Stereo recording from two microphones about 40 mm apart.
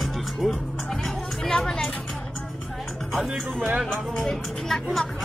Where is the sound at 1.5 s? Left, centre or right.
Centre.